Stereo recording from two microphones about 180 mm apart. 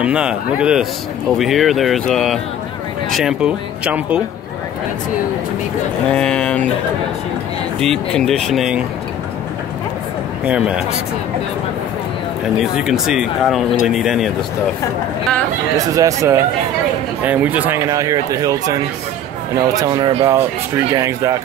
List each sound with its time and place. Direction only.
0.0 s speech: 5° right (ahead or behind)
6.0 s speech: 5° left (ahead or behind)
7.8 s speech: 5° left (ahead or behind)
10.4 s speech: 5° right (ahead or behind)
12.5 s speech: 5° right (ahead or behind)
15.9 s speech: 20° right (ahead or behind)